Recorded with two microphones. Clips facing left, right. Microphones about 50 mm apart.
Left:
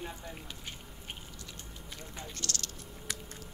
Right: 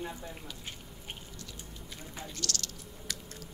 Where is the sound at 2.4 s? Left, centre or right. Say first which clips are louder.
Right 2 dB; left.